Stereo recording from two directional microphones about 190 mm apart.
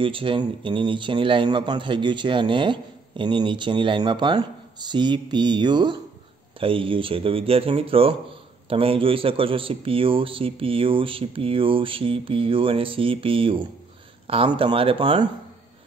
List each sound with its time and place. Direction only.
0.0 s a man's voice: 25° right (ahead or behind)